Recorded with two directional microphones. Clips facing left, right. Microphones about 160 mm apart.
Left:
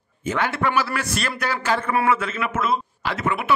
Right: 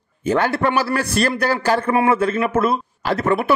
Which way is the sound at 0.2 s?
35° right (ahead or behind).